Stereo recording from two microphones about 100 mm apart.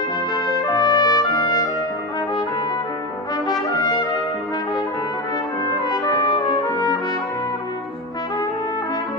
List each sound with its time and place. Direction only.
0.6 s trumpet: 45° left (ahead or behind)
3.4 s brass instrument: 45° left (ahead or behind)
6.2 s trumpet: 50° left (ahead or behind)